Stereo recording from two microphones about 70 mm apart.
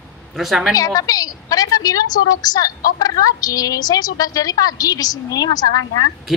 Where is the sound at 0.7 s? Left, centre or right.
Left.